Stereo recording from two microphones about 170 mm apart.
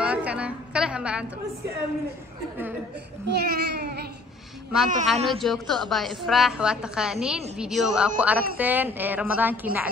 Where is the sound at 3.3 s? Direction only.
75° right (ahead or behind).